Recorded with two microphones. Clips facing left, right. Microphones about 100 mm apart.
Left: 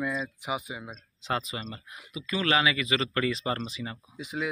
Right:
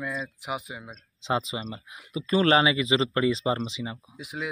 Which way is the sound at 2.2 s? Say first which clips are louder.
Right 6 dB; 30° right (ahead or behind).